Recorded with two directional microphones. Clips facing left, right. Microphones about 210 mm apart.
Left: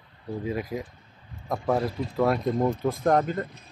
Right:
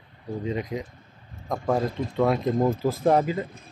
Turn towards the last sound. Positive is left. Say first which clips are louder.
# right 2 dB
turn(degrees=-5)  # may be behind; listen again after turning